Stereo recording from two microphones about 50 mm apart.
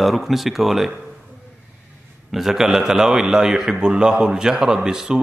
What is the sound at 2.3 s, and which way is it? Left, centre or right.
A man's voice, centre.